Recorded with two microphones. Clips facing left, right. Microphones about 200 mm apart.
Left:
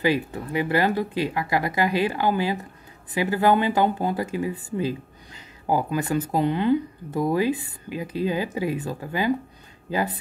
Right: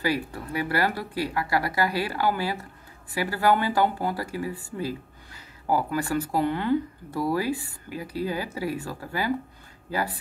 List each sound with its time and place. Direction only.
0.0 s speech: 20° left (ahead or behind)